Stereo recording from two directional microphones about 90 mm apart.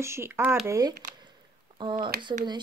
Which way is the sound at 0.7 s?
40° right (ahead or behind).